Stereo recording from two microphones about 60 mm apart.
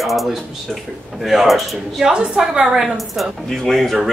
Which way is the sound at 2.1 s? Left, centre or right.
Centre.